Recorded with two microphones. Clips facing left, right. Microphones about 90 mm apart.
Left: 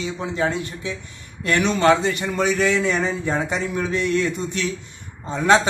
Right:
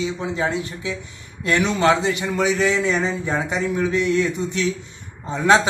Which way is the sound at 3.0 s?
20° right (ahead or behind).